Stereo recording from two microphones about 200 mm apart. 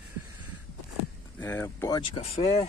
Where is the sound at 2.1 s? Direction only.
30° left (ahead or behind).